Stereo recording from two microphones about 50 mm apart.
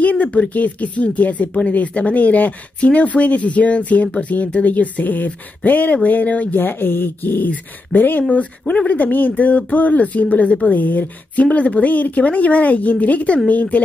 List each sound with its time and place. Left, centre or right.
0.0 s speech: left
6.5 s speech: left
10.7 s speech: left